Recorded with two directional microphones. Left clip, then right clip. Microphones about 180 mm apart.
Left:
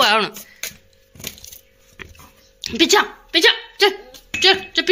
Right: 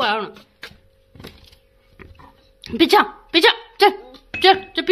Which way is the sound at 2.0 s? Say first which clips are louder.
Left 7 dB; centre (ahead or behind).